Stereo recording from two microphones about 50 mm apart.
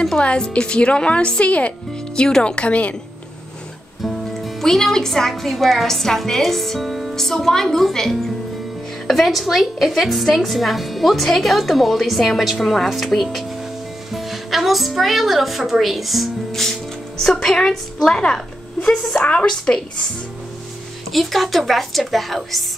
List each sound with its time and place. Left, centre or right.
0.0 s a woman's voice: centre
4.0 s a woman's voice: centre
21.1 s a woman's voice: centre